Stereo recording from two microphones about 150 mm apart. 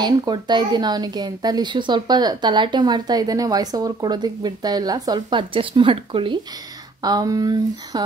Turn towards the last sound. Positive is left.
turn(degrees=-25)  # may be behind; listen again after turning